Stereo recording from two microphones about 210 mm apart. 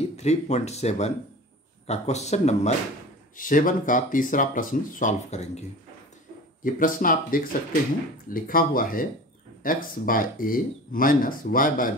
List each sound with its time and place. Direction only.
0.2 s speech: 30° left (ahead or behind)
6.6 s speech: 40° left (ahead or behind)